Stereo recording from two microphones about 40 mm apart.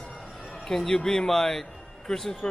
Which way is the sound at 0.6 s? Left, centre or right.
Centre.